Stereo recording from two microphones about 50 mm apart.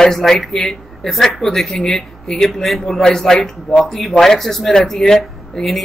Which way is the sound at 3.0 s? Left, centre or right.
Centre.